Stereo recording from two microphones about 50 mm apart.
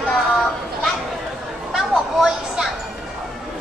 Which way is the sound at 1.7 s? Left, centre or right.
Centre.